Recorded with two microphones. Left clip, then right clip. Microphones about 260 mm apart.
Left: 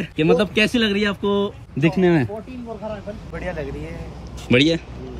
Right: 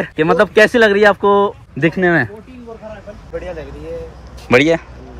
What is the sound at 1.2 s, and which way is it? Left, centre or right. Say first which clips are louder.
Speech: right 9 dB; centre.